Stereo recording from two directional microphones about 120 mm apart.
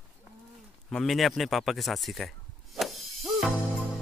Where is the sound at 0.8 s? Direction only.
5° left (ahead or behind).